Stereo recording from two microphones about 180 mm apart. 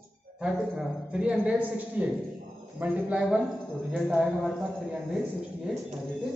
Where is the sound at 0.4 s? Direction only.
5° right (ahead or behind).